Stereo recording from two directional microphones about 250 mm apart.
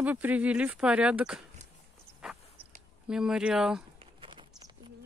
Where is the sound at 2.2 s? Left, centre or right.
Centre.